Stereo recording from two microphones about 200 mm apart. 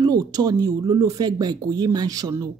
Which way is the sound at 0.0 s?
20° right (ahead or behind).